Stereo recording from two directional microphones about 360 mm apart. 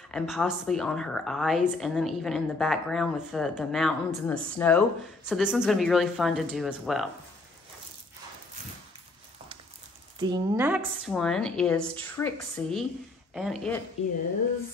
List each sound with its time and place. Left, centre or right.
0.1 s a woman's voice: centre
10.1 s a woman's voice: centre
14.0 s a woman's voice: centre